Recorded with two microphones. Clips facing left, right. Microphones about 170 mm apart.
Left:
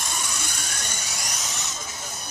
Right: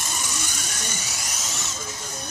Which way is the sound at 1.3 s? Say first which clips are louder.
Even; centre (ahead or behind).